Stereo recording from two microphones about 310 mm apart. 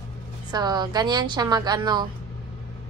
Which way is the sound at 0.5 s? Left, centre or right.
Centre.